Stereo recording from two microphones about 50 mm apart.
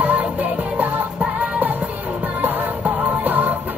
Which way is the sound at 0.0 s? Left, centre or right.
Right.